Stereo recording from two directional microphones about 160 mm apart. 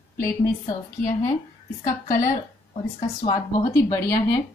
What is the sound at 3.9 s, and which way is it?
Speech, 20° left (ahead or behind).